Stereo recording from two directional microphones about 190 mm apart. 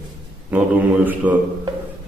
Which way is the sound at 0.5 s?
10° right (ahead or behind).